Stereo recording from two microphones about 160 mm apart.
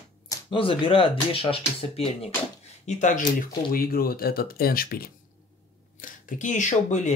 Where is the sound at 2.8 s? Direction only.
50° left (ahead or behind); by 5.1 s 70° left (ahead or behind).